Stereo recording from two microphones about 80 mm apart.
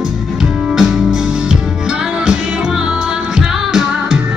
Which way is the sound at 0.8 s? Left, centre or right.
Centre.